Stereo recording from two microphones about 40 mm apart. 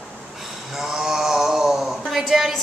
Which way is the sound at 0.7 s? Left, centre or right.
Centre.